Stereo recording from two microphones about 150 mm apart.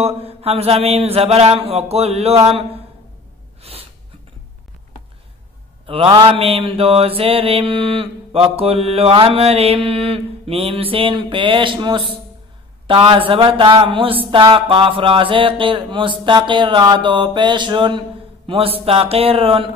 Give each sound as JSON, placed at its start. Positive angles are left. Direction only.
{"t": 0.0, "sound": "mantra", "side_deg": -40}
{"t": 3.6, "sound": "gasp", "side_deg": -40}
{"t": 5.9, "sound": "mantra", "side_deg": -35}